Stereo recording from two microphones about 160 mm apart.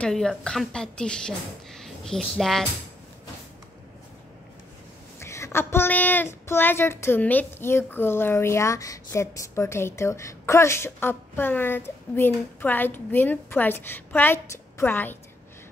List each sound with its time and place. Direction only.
0.0 s a woman's voice: 5° left (ahead or behind)
5.2 s speech: 15° left (ahead or behind)